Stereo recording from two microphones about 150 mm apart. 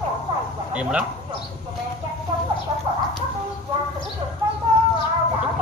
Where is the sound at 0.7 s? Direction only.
5° right (ahead or behind).